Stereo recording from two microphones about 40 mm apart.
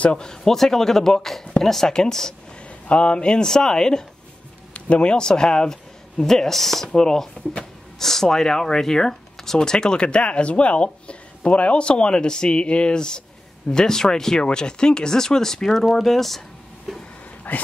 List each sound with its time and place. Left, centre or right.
0.2 s speech: centre
2.6 s speech: left
4.7 s speech: left; by 17.0 s centre
17.4 s a sound: left